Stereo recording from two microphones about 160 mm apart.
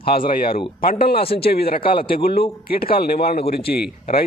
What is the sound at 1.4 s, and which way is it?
Speech, 75° left (ahead or behind).